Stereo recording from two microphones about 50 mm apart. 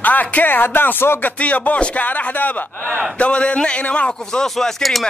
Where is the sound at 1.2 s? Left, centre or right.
Left.